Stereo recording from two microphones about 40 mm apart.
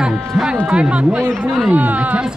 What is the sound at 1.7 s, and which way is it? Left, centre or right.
Speech, right.